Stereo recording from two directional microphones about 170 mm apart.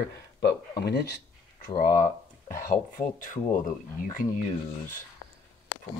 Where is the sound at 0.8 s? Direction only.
70° left (ahead or behind).